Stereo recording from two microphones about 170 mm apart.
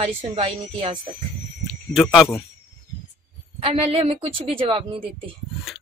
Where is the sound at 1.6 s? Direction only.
Centre (ahead or behind).